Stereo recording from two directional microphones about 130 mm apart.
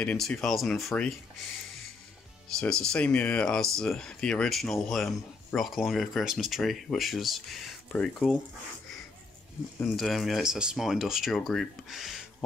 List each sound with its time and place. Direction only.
0.0 s speech: 10° left (ahead or behind)
2.6 s speech: 5° left (ahead or behind)
9.9 s speech: centre (ahead or behind)